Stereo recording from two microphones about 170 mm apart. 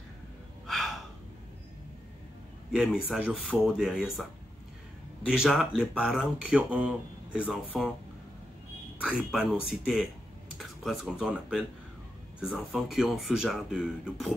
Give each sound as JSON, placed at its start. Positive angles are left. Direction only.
{"t": 2.7, "sound": "speech", "side_deg": -5}
{"t": 9.0, "sound": "speech", "side_deg": -5}